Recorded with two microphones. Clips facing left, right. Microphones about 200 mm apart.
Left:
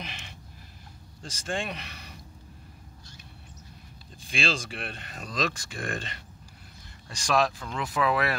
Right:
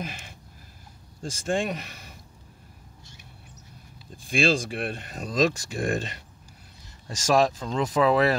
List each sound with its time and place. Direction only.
0.0 s a sound: 45° right (ahead or behind)
1.2 s speech: 45° right (ahead or behind)
4.3 s speech: 45° right (ahead or behind)
7.1 s speech: 40° right (ahead or behind)
7.5 s speech: 20° right (ahead or behind)